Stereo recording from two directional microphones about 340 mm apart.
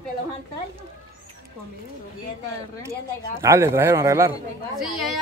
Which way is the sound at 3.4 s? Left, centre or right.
Centre.